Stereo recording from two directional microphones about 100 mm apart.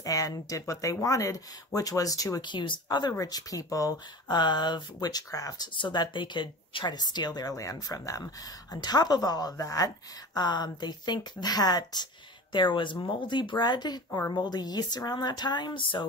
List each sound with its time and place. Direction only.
0.0 s a woman's voice: 35° left (ahead or behind)
2.4 s speech: 50° left (ahead or behind); by 5.7 s 35° left (ahead or behind)
5.8 s a woman's voice: 50° left (ahead or behind)